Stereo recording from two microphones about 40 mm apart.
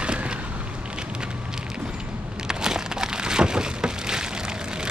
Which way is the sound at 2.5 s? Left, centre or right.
Centre.